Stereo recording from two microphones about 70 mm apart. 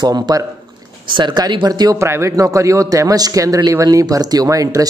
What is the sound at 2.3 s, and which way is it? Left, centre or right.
A man's voice, right.